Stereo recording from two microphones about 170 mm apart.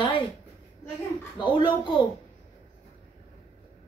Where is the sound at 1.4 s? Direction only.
25° left (ahead or behind).